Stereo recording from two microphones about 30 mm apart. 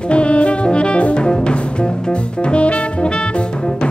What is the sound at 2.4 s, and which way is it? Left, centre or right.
Music, left.